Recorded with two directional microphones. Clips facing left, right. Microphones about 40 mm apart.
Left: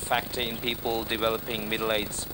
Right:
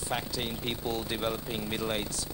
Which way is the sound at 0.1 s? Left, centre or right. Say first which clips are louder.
Left 6 dB; left.